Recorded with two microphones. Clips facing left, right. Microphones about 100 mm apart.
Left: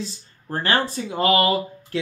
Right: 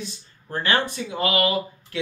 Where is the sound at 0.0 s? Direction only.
35° left (ahead or behind).